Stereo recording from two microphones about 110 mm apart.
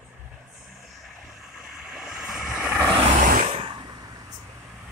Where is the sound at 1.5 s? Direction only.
5° right (ahead or behind).